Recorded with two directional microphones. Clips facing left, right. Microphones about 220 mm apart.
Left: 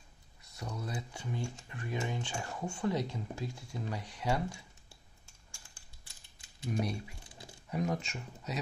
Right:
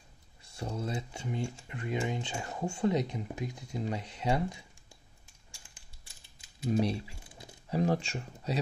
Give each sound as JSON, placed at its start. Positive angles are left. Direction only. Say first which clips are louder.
{"t": 0.4, "sound": "speech", "louder": "right 5 dB", "side_deg": -30}
{"t": 2.0, "sound": "a sound", "louder": "right 3 dB", "side_deg": -20}
{"t": 2.6, "sound": "speech", "louder": "right 5 dB", "side_deg": -25}
{"t": 6.7, "sound": "speech", "louder": "right 6 dB", "side_deg": -25}